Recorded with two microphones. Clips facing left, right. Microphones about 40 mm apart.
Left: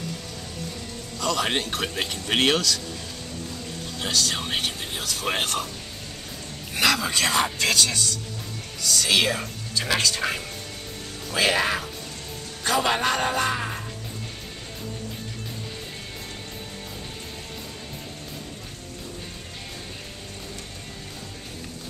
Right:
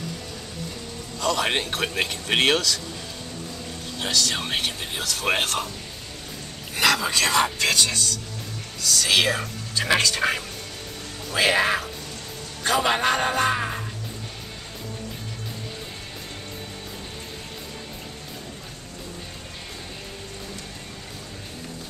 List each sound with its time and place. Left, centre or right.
1.2 s speech: centre
4.0 s speech: centre
6.8 s a sound: centre
7.2 s speech: centre
8.8 s speech: centre